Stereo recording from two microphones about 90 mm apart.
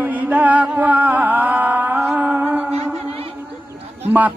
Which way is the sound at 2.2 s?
20° right (ahead or behind).